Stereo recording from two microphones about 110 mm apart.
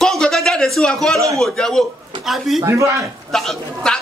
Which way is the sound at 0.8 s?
5° left (ahead or behind).